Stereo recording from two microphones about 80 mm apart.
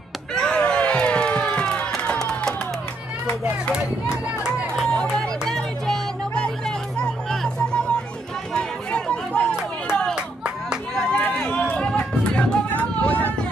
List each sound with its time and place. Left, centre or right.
0.3 s crowd: centre
2.1 s music: centre
3.7 s run: centre
5.5 s music: centre
8.5 s chatter: centre
10.1 s music: centre
11.0 s a sound: centre
11.9 s music: centre